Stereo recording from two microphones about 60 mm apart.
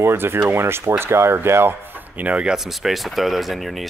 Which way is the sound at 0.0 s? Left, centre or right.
Right.